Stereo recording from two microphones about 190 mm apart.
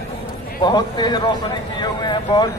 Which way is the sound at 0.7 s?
20° left (ahead or behind).